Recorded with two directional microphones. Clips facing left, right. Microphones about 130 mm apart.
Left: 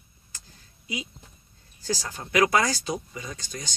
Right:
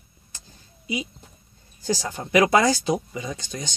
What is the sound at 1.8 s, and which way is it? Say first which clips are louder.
Speech: right 5 dB; 20° right (ahead or behind).